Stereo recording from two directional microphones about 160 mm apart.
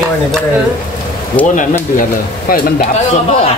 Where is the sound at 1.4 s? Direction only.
55° left (ahead or behind).